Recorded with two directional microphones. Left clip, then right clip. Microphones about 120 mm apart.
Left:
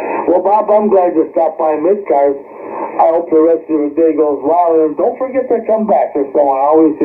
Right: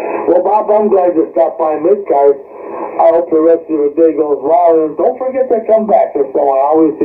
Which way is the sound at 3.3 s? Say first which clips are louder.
Right 1 dB; 25° left (ahead or behind).